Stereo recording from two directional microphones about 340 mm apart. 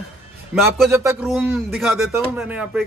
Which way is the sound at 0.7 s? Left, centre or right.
Centre.